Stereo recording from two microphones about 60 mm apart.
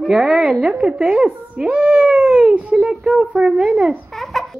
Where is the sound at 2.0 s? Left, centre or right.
Centre.